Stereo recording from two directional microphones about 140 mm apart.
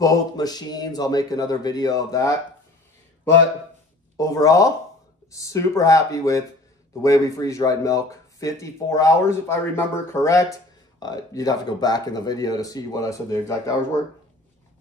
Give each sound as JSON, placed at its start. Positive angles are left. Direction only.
{"t": 0.0, "sound": "speech", "side_deg": 25}
{"t": 4.2, "sound": "speech", "side_deg": 25}